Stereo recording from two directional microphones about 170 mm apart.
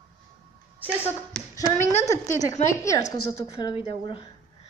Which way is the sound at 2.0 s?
20° left (ahead or behind).